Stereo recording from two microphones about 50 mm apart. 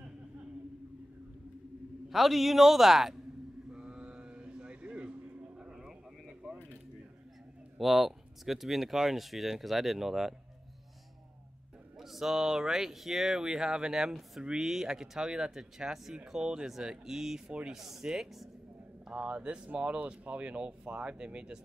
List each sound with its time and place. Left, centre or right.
2.0 s speech: centre
3.7 s vehicle: centre
7.7 s speech: centre
12.0 s a sound: centre
12.5 s speech: centre
19.0 s speech: right